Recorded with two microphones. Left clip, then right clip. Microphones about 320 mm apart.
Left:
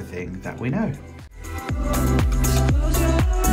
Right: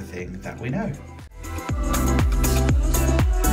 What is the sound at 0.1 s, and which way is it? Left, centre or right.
Speech, centre.